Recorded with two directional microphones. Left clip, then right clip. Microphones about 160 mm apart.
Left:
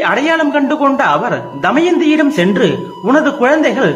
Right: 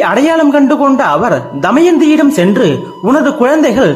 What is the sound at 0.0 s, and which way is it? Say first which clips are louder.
A man's voice: right 3 dB; 40° right (ahead or behind).